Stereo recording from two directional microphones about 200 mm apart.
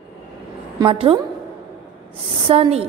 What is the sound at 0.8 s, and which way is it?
Speech, 25° right (ahead or behind).